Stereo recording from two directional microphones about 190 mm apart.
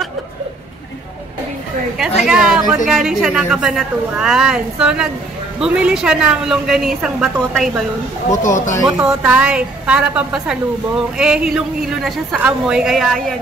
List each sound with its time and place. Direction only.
2.0 s a woman's voice: 5° right (ahead or behind)
8.4 s speech: 40° left (ahead or behind)
9.0 s a woman's voice: 5° right (ahead or behind)